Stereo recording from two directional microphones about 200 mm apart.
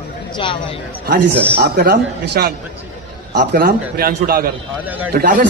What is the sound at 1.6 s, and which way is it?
A man's voice, 50° right (ahead or behind).